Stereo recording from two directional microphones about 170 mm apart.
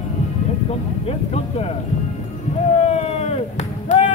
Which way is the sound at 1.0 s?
35° left (ahead or behind).